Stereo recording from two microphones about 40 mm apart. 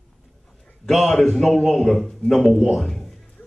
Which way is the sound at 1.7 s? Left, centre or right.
Centre.